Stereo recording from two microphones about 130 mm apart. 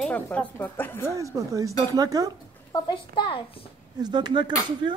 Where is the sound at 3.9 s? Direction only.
35° right (ahead or behind).